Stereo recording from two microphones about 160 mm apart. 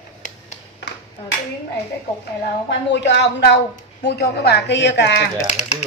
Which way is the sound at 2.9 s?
90° left.